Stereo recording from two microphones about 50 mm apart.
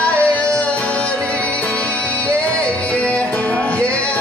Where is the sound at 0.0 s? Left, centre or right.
Left.